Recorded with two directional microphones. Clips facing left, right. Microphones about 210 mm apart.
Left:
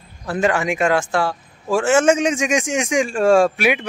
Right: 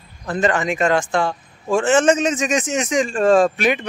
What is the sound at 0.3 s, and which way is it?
Speech, 10° left (ahead or behind).